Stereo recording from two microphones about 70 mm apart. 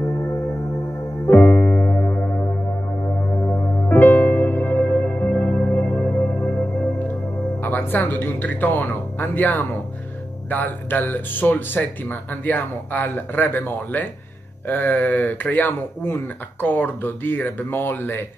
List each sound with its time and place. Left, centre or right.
0.1 s music: left
1.3 s music: left
3.4 s music: left
3.9 s music: left
6.5 s music: centre
7.6 s speech: left